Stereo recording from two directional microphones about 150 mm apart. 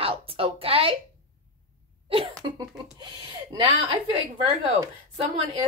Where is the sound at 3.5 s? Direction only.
25° right (ahead or behind).